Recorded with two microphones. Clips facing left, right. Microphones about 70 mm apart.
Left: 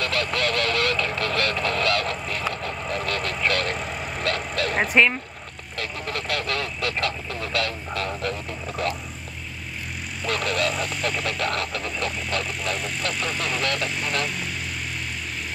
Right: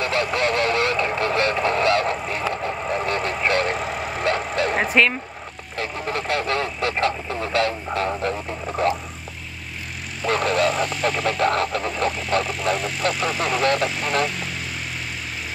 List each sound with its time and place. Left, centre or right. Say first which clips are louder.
0.0 s honk: right 3 dB; right
2.2 s vehicle: right 4 dB; right
3.7 s vehicle: right 4 dB; centre
4.7 s speech: left 1 dB; centre
5.8 s speech: right 4 dB; right
10.3 s speech: right 5 dB; right
10.7 s vehicle: right 4 dB; centre
11.4 s speech: right 9 dB; right
12.1 s vehicle: right 5 dB; centre